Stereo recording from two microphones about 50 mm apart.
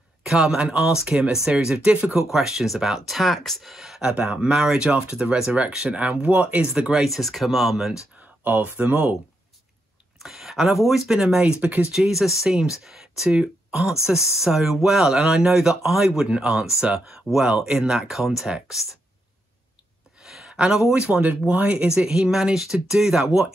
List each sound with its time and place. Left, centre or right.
0.2 s speech: centre
2.3 s speech: centre
4.1 s speech: right
6.7 s speech: centre
7.1 s speech: centre
8.5 s speech: right
10.2 s speech: centre
11.1 s speech: centre
11.6 s speech: right
11.9 s speech: centre
20.2 s a sound: centre
20.9 s speech: right
21.3 s speech: right
21.8 s speech: centre